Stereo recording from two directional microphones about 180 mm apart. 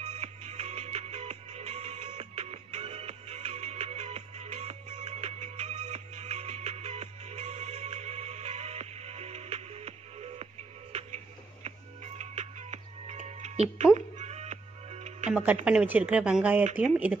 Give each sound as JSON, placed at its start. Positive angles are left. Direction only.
{"t": 0.0, "sound": "music", "side_deg": -35}
{"t": 15.6, "sound": "speech", "side_deg": -5}